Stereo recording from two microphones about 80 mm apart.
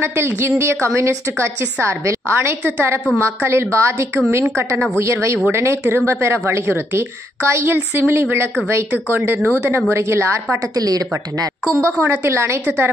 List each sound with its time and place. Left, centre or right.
0.0 s speech: right
10.8 s speech: right
12.0 s speech: right